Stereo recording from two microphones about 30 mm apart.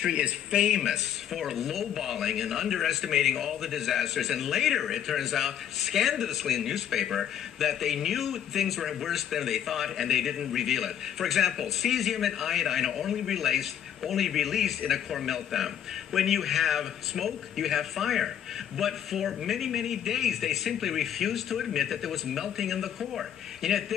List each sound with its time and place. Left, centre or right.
0.5 s speech: centre
1.3 s a man's voice: centre